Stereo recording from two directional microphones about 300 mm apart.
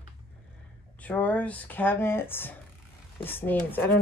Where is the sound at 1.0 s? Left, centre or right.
Centre.